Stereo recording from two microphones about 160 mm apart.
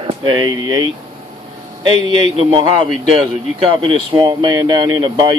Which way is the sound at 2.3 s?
35° right (ahead or behind).